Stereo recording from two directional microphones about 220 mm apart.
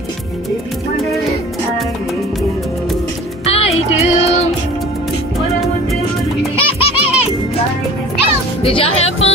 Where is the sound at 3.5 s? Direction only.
25° left (ahead or behind).